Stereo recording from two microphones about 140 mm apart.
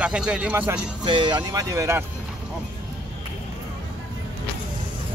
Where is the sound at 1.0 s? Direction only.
35° right (ahead or behind).